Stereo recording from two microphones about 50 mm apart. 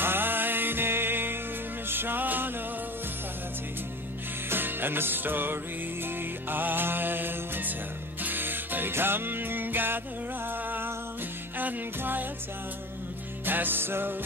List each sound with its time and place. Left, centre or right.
0.0 s music: right
4.5 s music: right
11.5 s music: right
13.5 s music: right